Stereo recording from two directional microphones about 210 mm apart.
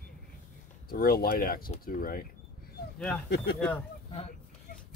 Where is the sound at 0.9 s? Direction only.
45° left (ahead or behind).